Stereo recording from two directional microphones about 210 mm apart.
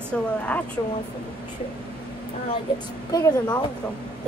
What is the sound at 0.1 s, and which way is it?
Speech, 5° left (ahead or behind).